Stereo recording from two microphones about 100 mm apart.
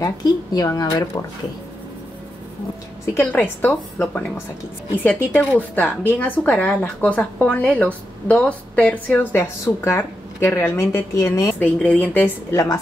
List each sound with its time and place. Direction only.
0.0 s speech: 40° left (ahead or behind)
3.2 s a woman's voice: 20° left (ahead or behind)
11.6 s a woman's voice: 15° left (ahead or behind)